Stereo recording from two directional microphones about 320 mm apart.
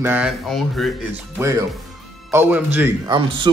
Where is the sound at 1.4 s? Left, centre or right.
Centre.